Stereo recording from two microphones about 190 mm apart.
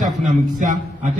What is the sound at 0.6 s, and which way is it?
Mantra, 45° right (ahead or behind).